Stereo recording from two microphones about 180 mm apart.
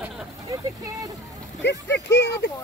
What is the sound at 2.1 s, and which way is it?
Speech, 70° left (ahead or behind).